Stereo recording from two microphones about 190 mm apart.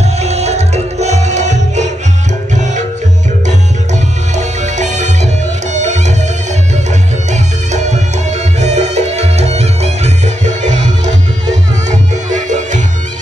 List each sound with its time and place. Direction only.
0.0 s music: 35° right (ahead or behind)
2.5 s tabla: 40° right (ahead or behind)
3.4 s music: 40° right (ahead or behind)
7.2 s music: 35° right (ahead or behind)